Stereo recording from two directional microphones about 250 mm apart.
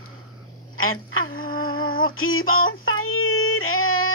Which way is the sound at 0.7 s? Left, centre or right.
Left.